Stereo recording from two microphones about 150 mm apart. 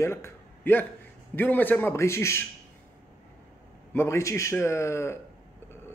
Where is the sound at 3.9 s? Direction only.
15° left (ahead or behind).